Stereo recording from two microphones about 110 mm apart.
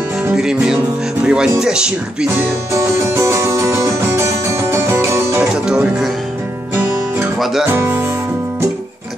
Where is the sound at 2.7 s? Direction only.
25° right (ahead or behind).